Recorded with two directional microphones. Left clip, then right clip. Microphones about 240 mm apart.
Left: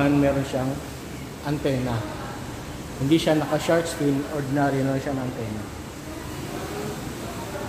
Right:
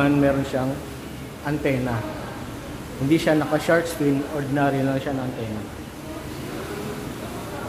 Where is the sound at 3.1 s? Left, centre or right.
Centre.